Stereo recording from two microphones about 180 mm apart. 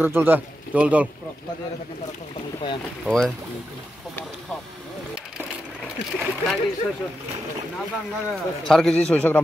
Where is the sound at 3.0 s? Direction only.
Centre (ahead or behind).